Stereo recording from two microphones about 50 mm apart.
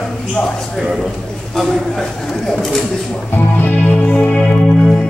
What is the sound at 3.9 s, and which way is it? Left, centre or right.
Music, centre.